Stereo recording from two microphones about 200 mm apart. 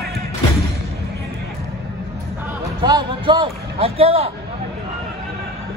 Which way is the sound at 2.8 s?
20° right (ahead or behind).